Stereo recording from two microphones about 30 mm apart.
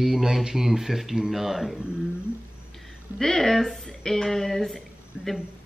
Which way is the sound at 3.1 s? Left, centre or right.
Centre.